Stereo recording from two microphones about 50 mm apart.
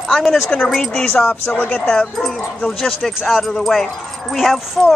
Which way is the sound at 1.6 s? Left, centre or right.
Left.